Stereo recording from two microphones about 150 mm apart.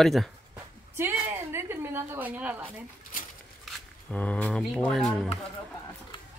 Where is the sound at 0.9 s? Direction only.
15° right (ahead or behind).